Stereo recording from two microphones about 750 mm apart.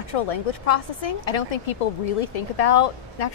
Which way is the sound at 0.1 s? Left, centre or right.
Left.